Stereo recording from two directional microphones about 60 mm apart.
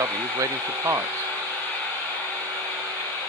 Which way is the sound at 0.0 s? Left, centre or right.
Right.